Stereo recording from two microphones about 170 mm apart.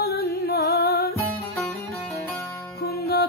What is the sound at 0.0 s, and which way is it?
Music, 70° left (ahead or behind).